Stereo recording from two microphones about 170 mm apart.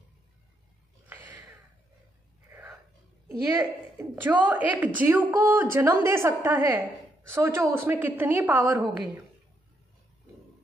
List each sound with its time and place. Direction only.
1.0 s a sound: 10° right (ahead or behind)
2.5 s whispering: 15° right (ahead or behind)
4.0 s a woman's voice: 10° right (ahead or behind)
8.8 s speech: 20° right (ahead or behind)